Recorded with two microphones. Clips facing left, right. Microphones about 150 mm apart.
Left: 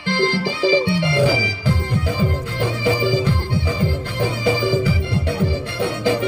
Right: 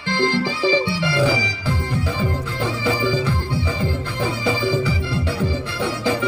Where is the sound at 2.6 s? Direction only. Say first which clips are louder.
Left 2 dB; 50° left (ahead or behind).